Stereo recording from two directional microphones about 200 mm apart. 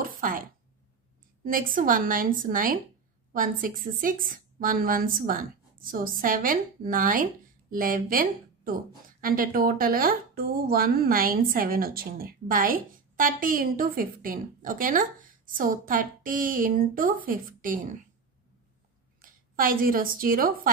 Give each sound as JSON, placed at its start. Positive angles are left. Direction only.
{"t": 0.0, "sound": "a sound", "side_deg": -45}
{"t": 1.4, "sound": "speech", "side_deg": -45}
{"t": 19.5, "sound": "speech", "side_deg": -45}